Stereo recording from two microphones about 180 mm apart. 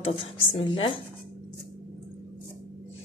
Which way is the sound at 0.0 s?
30° left (ahead or behind).